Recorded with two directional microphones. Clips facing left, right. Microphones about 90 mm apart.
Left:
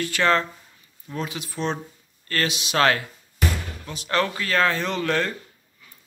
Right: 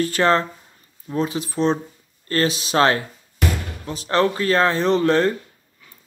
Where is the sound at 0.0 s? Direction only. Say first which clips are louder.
Right 3 dB; 35° right (ahead or behind).